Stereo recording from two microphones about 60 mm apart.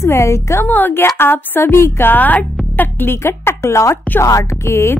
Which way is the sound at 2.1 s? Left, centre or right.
Left.